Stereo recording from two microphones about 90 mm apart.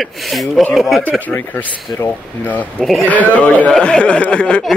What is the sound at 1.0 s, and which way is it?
Speech, 15° left (ahead or behind).